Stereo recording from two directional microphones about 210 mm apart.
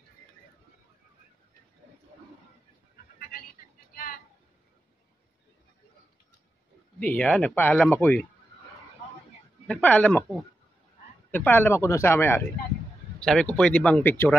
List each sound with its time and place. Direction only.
3.2 s a sound: 45° left (ahead or behind)
7.0 s speech: 5° left (ahead or behind)
9.7 s speech: 5° left (ahead or behind)
11.3 s speech: 10° left (ahead or behind)